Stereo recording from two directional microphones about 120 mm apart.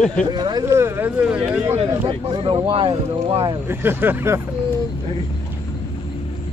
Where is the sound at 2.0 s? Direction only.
45° right (ahead or behind).